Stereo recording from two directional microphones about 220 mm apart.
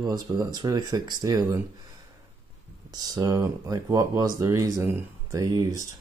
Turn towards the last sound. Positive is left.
turn(degrees=-15)  # may be behind; listen again after turning